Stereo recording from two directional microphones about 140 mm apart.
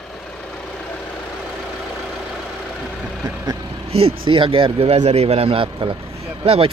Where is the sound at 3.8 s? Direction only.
45° right (ahead or behind).